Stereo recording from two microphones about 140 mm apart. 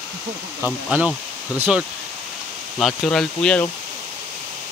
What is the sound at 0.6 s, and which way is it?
A man's voice, 10° right (ahead or behind).